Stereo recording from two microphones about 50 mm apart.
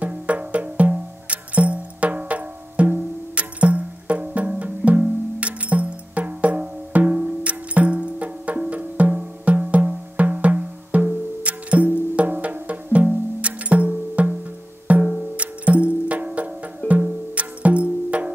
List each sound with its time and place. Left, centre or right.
0.0 s music: right